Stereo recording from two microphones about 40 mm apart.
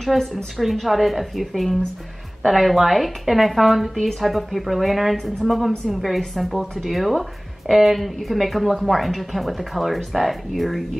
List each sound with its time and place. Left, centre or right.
0.1 s a woman's voice: centre